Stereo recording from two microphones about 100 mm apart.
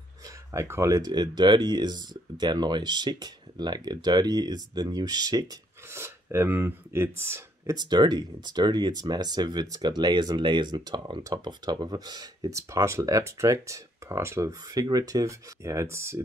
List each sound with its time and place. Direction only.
0.5 s speech: 30° right (ahead or behind)
1.1 s speech: 45° right (ahead or behind)
5.9 s speech: 25° right (ahead or behind)
7.7 s speech: 45° right (ahead or behind); by 16.2 s 25° right (ahead or behind)